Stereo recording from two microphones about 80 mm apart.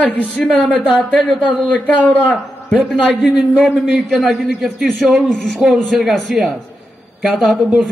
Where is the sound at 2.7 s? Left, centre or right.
Centre.